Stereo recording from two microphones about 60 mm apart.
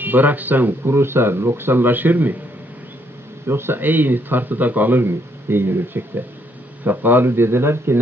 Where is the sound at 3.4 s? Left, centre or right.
Right.